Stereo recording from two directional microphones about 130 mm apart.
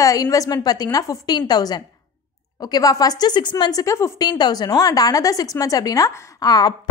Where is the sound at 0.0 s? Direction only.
25° left (ahead or behind).